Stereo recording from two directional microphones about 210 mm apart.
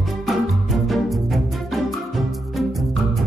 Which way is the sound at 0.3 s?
Centre (ahead or behind).